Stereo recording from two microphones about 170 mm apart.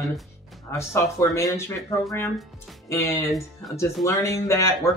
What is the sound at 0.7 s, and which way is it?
Speech, 15° left (ahead or behind).